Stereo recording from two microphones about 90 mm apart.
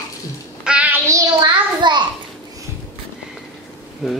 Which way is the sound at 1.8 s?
55° right (ahead or behind).